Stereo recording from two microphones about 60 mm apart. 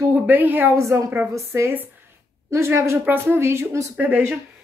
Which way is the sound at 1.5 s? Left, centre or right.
Right.